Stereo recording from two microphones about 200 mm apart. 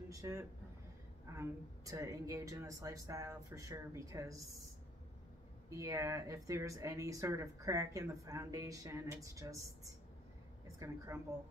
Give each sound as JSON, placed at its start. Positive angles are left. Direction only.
{"t": 0.1, "sound": "speech", "side_deg": -15}
{"t": 5.7, "sound": "speech", "side_deg": -15}